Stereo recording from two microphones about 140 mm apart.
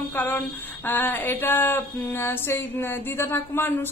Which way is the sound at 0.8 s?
15° left (ahead or behind).